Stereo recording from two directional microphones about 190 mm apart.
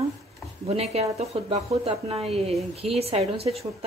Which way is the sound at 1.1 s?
35° right (ahead or behind).